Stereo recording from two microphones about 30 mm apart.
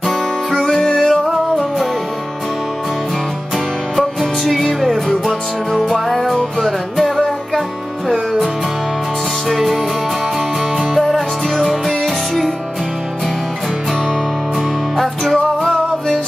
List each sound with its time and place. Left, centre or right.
0.5 s music: centre
0.8 s music: left
3.9 s music: centre
6.0 s music: centre
9.5 s music: centre
15.6 s music: centre